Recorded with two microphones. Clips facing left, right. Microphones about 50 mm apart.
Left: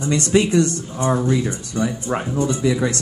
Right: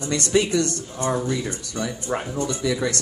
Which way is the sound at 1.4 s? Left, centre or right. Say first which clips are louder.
Left 5 dB; left.